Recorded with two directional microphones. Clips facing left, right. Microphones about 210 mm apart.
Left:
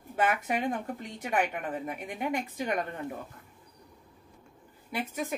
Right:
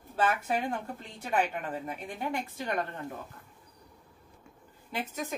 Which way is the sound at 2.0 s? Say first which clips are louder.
Left 2 dB; 15° left (ahead or behind).